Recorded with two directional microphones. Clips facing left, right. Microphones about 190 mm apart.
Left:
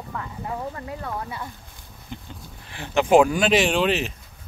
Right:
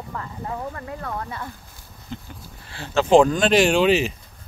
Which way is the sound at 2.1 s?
15° left (ahead or behind).